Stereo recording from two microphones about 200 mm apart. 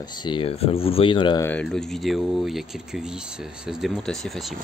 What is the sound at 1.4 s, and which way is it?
Speech, 5° left (ahead or behind).